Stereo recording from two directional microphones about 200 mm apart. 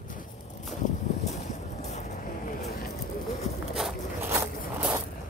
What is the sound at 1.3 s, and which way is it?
Boat, 35° left (ahead or behind).